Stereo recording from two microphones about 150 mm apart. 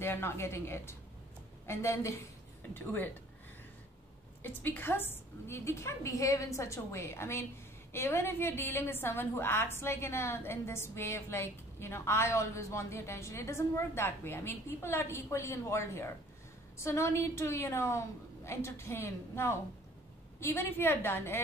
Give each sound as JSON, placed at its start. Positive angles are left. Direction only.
{"t": 0.0, "sound": "a woman's voice", "side_deg": 15}
{"t": 4.4, "sound": "a woman's voice", "side_deg": 15}